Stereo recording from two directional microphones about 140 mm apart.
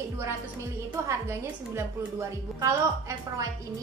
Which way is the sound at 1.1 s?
20° right (ahead or behind).